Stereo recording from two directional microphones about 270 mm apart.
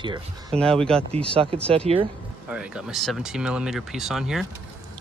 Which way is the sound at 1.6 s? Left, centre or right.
Right.